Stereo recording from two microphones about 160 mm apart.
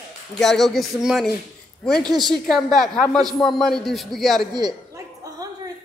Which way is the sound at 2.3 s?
Centre (ahead or behind).